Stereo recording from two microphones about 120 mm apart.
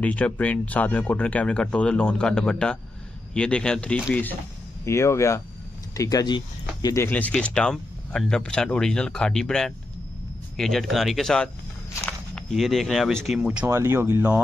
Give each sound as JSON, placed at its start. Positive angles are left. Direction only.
{"t": 0.0, "sound": "speech", "side_deg": 10}
{"t": 7.0, "sound": "speech", "side_deg": 15}
{"t": 13.7, "sound": "speech", "side_deg": -20}